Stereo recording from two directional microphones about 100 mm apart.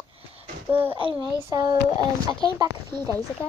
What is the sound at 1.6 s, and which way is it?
Speech, 40° right (ahead or behind).